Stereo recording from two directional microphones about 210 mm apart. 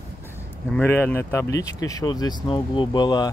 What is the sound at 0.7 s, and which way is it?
Speech, 10° left (ahead or behind).